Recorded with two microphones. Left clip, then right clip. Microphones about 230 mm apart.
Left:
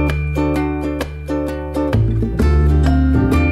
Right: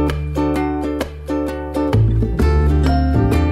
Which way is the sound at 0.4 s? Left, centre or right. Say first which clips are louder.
Even; right.